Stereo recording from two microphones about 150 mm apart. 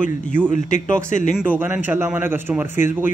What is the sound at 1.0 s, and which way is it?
Speech, 55° left (ahead or behind).